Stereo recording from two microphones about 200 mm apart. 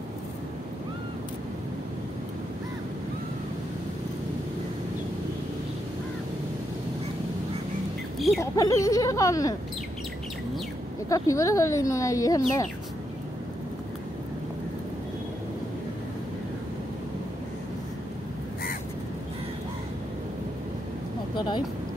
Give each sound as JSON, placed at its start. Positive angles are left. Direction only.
{"t": 8.4, "sound": "speech", "side_deg": 15}
{"t": 11.1, "sound": "speech", "side_deg": 15}
{"t": 21.4, "sound": "a sound", "side_deg": 20}